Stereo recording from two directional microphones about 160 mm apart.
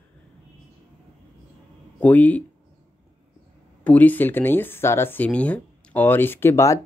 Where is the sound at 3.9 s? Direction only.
10° left (ahead or behind).